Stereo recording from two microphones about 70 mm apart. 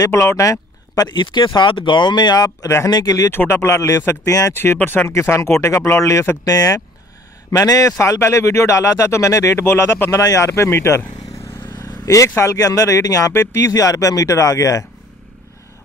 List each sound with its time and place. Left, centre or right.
0.0 s speech: left
1.0 s speech: left
3.3 s speech: left
4.3 s speech: left
4.7 s speech: left
6.4 s speech: left
12.1 s speech: left
13.3 s speech: left
13.7 s speech: left